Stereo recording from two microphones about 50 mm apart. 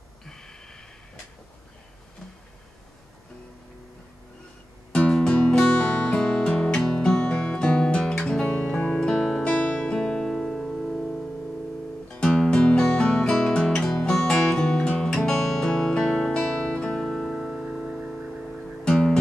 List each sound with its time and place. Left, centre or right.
0.2 s a sound: centre
5.1 s music: centre
5.8 s music: left
9.0 s music: centre
9.4 s music: left
9.8 s music: centre